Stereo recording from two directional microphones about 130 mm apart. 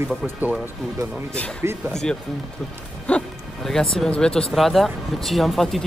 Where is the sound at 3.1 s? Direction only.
5° left (ahead or behind).